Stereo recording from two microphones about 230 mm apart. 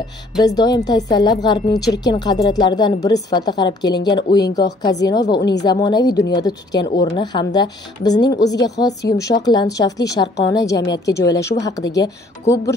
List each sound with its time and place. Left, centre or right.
0.4 s speech: centre